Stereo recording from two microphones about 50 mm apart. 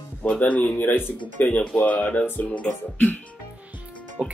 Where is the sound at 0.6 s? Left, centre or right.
Left.